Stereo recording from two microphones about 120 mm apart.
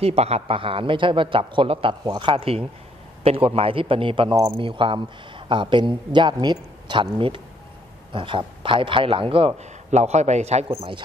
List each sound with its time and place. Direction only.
0.0 s a man's voice: 60° right (ahead or behind)
9.8 s a man's voice: 70° right (ahead or behind)